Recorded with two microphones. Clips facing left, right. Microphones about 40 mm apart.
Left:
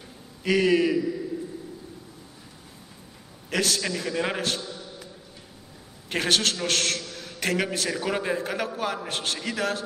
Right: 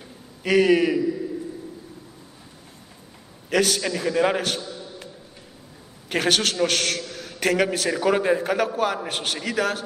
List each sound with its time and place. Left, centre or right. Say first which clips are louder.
0.4 s a man's voice: right 3 dB; centre
3.4 s a man's voice: right 4 dB; centre
6.0 s a man's voice: right 2 dB; centre